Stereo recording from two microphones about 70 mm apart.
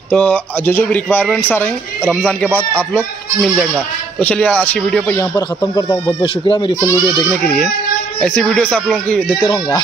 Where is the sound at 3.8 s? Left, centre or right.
Centre.